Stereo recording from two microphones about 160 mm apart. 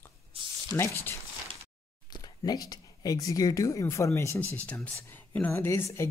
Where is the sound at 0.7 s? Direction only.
15° left (ahead or behind).